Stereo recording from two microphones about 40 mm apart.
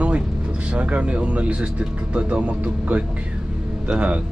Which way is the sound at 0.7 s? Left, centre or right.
Right.